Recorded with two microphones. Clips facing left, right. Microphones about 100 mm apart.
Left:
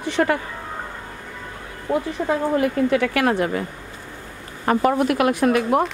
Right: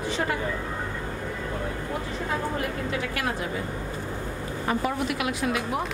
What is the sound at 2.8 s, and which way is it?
Speech, 65° left (ahead or behind).